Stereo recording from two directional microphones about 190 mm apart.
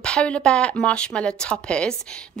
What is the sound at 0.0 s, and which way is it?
Speech, 5° left (ahead or behind).